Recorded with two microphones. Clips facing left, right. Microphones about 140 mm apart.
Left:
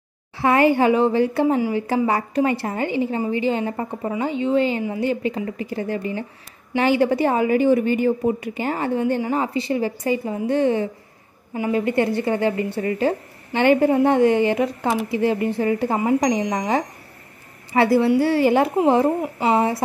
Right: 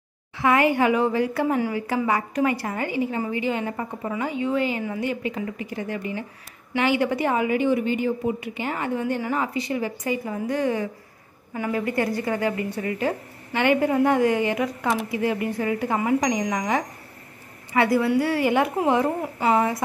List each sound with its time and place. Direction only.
0.4 s a woman's voice: 30° left (ahead or behind)